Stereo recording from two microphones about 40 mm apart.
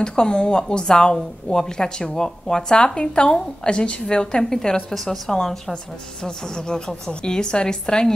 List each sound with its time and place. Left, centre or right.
0.0 s a woman's voice: left